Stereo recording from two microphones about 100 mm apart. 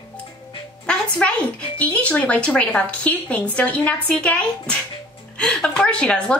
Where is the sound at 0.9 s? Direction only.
10° left (ahead or behind).